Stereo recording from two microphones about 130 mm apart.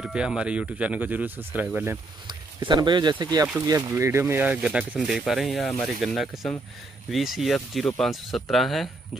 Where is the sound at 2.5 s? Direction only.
35° right (ahead or behind).